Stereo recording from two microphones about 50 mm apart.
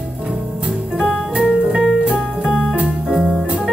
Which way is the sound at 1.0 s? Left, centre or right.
Right.